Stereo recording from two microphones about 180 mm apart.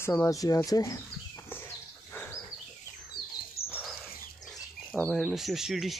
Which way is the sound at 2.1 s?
10° left (ahead or behind).